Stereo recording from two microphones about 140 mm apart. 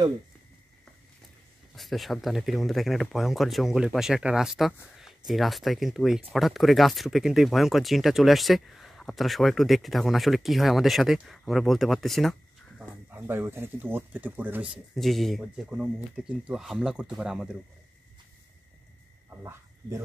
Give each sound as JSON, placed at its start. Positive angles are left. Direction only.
{"t": 1.8, "sound": "speech", "side_deg": 0}
{"t": 13.1, "sound": "speech", "side_deg": -15}
{"t": 19.4, "sound": "speech", "side_deg": -15}